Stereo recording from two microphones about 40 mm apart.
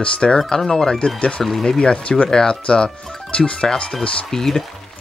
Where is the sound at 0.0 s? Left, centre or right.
Left.